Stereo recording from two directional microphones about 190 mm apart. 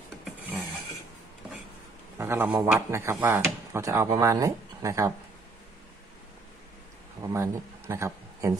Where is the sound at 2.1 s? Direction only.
10° right (ahead or behind).